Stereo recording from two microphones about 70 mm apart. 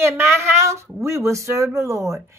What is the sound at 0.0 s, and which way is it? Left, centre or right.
Speech, right.